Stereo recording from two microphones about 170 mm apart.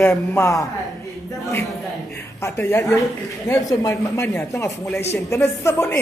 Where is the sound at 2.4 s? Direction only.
15° left (ahead or behind).